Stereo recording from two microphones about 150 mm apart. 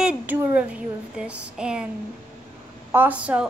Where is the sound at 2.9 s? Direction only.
10° right (ahead or behind).